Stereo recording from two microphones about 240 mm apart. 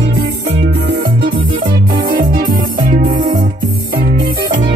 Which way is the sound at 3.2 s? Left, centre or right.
Right.